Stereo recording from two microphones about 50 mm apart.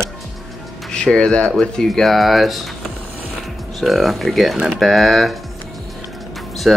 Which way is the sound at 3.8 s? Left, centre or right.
Centre.